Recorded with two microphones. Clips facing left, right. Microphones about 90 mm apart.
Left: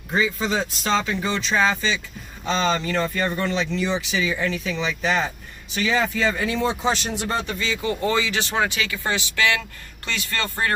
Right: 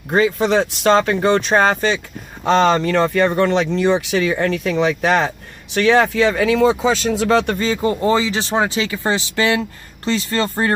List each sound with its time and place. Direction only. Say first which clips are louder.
0.1 s speech: right 7 dB; 60° right (ahead or behind); by 7.5 s 90° right
7.5 s speech: right 7 dB; 40° right (ahead or behind)